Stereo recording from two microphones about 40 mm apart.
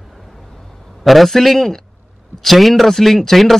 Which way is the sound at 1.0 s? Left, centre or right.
Centre.